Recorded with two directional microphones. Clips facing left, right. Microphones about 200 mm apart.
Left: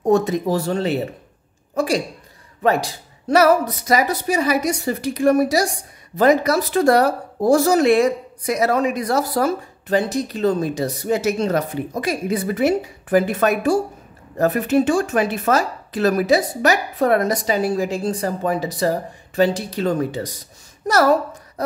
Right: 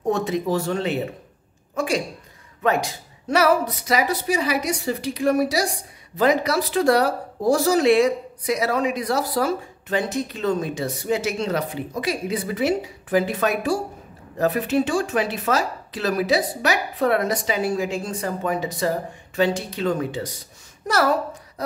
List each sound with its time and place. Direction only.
0.1 s a woman's voice: 40° left (ahead or behind)